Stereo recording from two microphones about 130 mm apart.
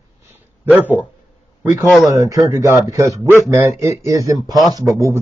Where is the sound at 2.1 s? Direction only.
25° right (ahead or behind).